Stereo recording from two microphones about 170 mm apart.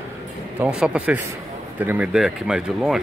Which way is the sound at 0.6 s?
5° right (ahead or behind).